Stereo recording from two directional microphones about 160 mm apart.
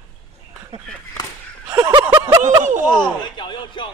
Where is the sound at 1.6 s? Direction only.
15° right (ahead or behind).